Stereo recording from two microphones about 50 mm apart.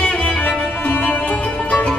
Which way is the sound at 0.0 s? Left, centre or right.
Left.